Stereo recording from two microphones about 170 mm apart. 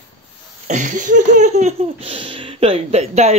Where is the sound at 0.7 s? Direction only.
50° right (ahead or behind).